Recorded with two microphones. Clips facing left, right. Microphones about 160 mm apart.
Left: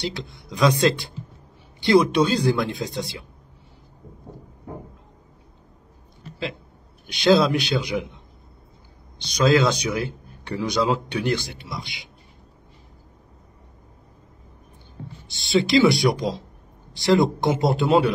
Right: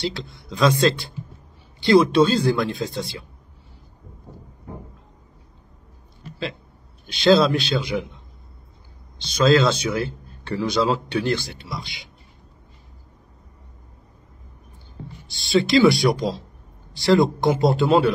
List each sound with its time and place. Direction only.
0.0 s speech: 20° left (ahead or behind)
7.1 s speech: 20° left (ahead or behind)
9.2 s speech: 15° left (ahead or behind)
15.2 s speech: 20° left (ahead or behind)